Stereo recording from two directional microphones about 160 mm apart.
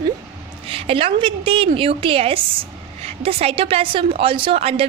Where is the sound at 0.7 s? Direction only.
35° right (ahead or behind).